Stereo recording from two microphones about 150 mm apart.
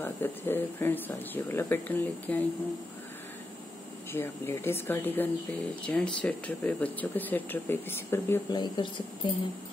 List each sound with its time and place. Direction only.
0.0 s speech: 15° left (ahead or behind)
4.1 s speech: 15° left (ahead or behind)
8.5 s speech: 30° left (ahead or behind)